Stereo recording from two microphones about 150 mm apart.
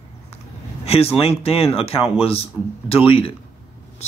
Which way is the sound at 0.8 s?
40° left (ahead or behind).